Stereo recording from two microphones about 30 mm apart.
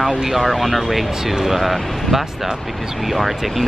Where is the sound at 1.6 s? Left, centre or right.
Centre.